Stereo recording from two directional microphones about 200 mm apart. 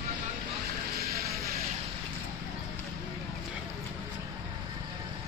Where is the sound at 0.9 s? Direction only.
50° right (ahead or behind).